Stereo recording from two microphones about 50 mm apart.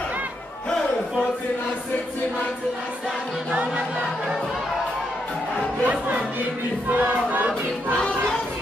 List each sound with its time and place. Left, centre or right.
5.9 s music: right
6.9 s crowd: right